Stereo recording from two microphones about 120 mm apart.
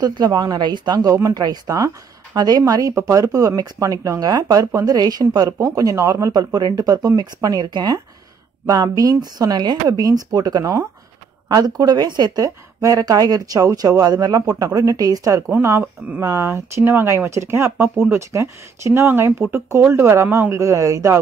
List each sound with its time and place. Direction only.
0.0 s speech: 35° right (ahead or behind)